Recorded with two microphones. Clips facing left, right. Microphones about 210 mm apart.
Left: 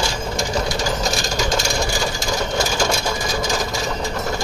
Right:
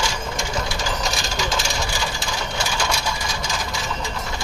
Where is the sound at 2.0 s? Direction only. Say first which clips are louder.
Left 5 dB; 45° left (ahead or behind).